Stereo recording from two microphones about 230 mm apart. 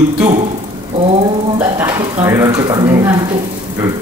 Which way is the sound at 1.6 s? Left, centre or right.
Centre.